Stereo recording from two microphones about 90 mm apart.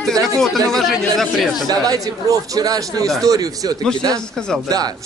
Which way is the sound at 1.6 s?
45° right (ahead or behind).